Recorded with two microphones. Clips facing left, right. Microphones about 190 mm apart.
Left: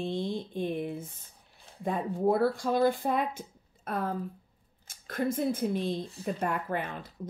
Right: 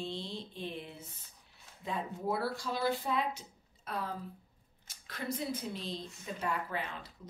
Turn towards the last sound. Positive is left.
turn(degrees=55)  # may be behind; listen again after turning